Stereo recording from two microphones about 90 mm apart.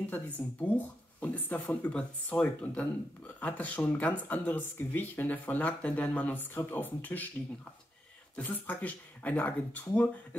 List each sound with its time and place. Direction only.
0.4 s speech: 20° left (ahead or behind)
8.4 s speech: 15° left (ahead or behind)